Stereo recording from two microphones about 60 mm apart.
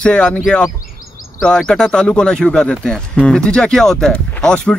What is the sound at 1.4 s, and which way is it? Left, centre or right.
Speech, centre.